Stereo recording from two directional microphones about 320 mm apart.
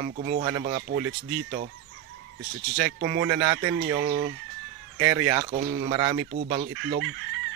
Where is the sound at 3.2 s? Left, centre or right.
Centre.